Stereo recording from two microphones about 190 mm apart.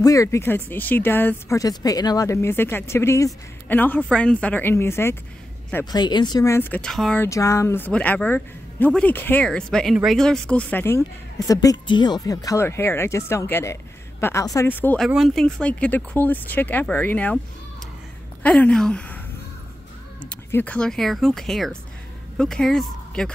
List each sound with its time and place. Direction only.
0.0 s speech: 15° left (ahead or behind)
7.2 s speech: 15° left (ahead or behind)
18.4 s a woman's voice: 5° left (ahead or behind)
20.2 s speech: 5° left (ahead or behind)